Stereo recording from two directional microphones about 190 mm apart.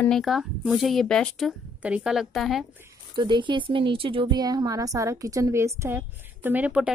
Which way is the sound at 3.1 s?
25° right (ahead or behind).